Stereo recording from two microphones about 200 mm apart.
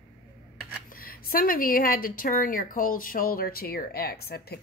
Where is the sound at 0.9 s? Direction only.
45° left (ahead or behind).